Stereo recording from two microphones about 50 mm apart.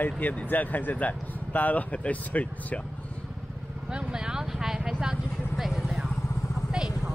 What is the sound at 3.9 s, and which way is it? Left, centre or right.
Speech, centre.